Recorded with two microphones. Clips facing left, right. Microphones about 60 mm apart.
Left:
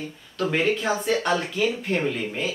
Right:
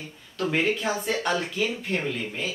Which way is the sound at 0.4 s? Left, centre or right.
Centre.